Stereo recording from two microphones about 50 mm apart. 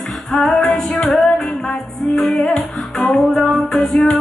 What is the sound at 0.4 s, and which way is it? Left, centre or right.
Music, centre.